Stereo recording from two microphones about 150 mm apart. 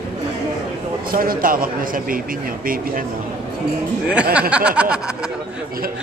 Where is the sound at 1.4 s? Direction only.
70° right (ahead or behind).